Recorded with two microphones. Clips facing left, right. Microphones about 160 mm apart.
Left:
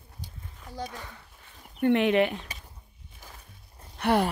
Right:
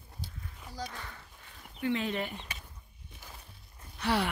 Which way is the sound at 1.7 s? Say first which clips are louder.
Left 10 dB; 60° left (ahead or behind).